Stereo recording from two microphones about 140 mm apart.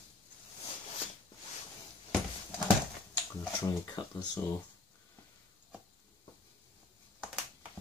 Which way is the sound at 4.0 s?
35° left (ahead or behind).